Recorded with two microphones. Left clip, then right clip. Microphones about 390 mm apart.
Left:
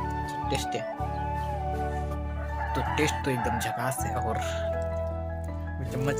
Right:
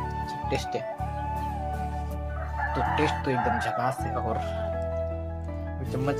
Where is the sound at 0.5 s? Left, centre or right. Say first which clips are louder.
Right 1 dB; left.